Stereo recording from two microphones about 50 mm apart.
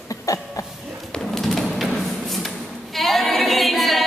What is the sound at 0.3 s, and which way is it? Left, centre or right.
Cough, left.